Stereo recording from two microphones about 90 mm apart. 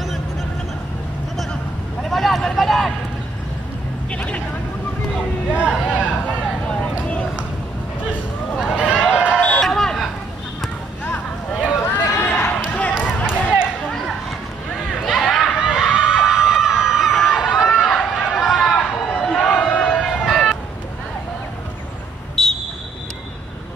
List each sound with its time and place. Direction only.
1.3 s vehicle: 5° left (ahead or behind)
4.1 s a sound: 15° left (ahead or behind)
5.6 s a sound: 10° right (ahead or behind)
6.2 s a sound: 15° left (ahead or behind)
8.5 s run: 5° right (ahead or behind)
9.6 s vehicle: 5° left (ahead or behind)
11.5 s run: 5° right (ahead or behind)
11.9 s basketball bounce: 20° left (ahead or behind)
15.0 s crowd: centre (ahead or behind)
17.5 s run: centre (ahead or behind)
19.7 s crowd: 15° left (ahead or behind)
20.0 s music: centre (ahead or behind)
22.3 s a sound: 5° left (ahead or behind)